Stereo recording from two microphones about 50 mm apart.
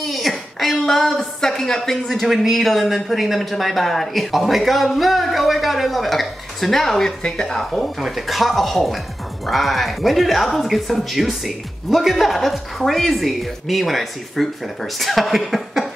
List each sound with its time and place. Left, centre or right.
0.0 s a woman's voice: centre